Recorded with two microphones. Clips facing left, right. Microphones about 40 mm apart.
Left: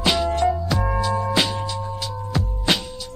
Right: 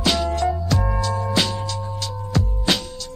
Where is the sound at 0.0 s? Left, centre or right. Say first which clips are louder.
Left 1 dB; centre.